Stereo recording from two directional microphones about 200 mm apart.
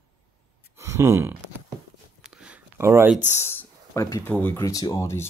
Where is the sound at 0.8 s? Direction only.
15° right (ahead or behind).